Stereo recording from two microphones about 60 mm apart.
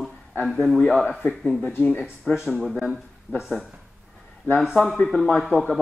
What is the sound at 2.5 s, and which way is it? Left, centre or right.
Speech, centre.